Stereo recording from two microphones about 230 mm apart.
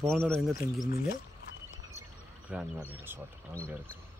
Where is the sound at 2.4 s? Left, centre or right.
Centre.